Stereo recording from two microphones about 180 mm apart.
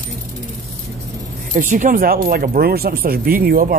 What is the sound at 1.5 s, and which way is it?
Speech, 50° right (ahead or behind).